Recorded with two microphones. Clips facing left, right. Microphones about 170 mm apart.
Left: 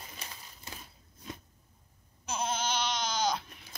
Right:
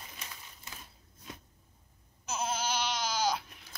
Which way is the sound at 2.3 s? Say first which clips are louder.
Left 1 dB; 5° right (ahead or behind).